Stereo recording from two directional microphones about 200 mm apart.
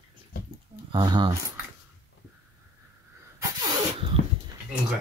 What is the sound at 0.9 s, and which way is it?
Speech, 25° right (ahead or behind).